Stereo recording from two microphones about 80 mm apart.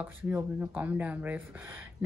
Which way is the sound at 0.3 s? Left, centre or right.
Right.